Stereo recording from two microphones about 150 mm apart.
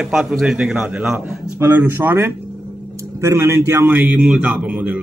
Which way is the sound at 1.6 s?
15° right (ahead or behind).